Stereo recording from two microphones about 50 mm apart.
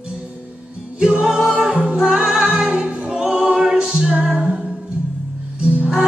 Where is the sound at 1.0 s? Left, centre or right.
Centre.